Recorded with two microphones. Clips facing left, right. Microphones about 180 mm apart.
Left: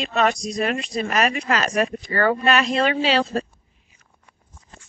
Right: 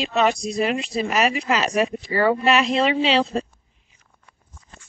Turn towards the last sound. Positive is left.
turn(degrees=0)  # may be behind; listen again after turning